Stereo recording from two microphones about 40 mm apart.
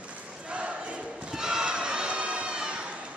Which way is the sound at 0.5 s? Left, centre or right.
Right.